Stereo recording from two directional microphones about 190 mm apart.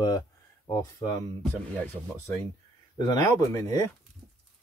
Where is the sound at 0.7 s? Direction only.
20° left (ahead or behind).